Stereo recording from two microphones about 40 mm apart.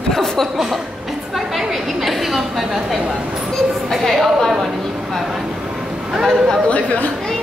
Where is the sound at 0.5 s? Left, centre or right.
Centre.